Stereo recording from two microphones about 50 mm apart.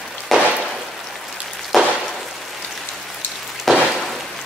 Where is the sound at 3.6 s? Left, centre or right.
Centre.